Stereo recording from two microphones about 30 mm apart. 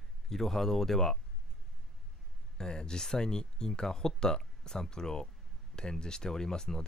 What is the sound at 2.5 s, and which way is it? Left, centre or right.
Speech, left.